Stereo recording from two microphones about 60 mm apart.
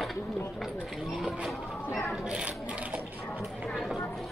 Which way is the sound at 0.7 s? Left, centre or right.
Centre.